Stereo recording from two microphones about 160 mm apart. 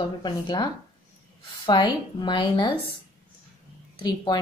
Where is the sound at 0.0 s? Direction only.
30° left (ahead or behind).